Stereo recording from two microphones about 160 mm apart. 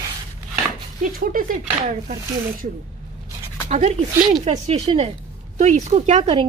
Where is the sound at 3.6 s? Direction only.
50° right (ahead or behind).